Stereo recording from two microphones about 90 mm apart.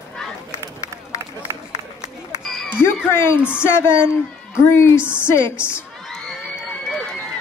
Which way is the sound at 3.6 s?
25° left (ahead or behind).